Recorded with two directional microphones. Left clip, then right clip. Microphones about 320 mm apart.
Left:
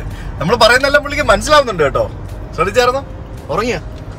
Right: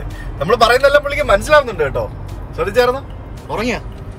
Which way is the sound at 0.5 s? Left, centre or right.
Centre.